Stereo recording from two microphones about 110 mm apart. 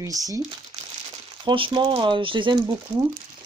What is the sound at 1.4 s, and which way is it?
Speech, 45° right (ahead or behind).